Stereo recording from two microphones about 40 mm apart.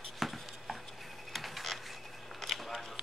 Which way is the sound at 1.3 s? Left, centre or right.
Centre.